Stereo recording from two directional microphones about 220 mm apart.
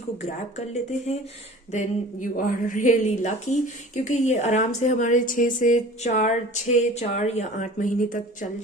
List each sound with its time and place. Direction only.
0.2 s a woman's voice: 30° left (ahead or behind)